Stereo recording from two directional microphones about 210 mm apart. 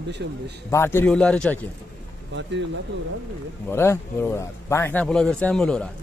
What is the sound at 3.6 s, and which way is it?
A man's voice, 10° left (ahead or behind).